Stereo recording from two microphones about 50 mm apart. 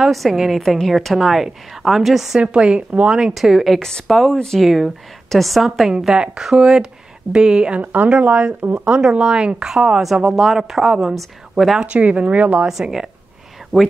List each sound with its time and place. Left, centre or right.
0.0 s a woman's voice: centre
2.4 s speech: right
3.3 s a woman's voice: centre
5.9 s a woman's voice: centre
7.8 s a woman's voice: right
8.7 s speech: centre
10.0 s a woman's voice: centre
11.8 s speech: right
12.8 s a woman's voice: centre